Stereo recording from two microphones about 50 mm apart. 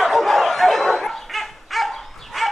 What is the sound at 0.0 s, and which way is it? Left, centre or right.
Dog, centre.